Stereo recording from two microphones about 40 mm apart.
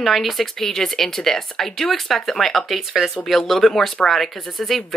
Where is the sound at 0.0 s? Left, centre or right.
Centre.